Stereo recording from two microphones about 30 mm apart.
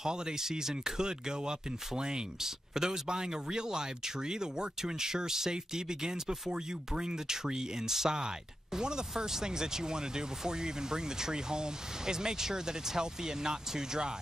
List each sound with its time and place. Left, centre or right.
0.0 s speech: right